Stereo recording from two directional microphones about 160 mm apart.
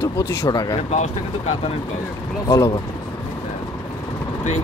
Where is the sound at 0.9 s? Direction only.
40° left (ahead or behind).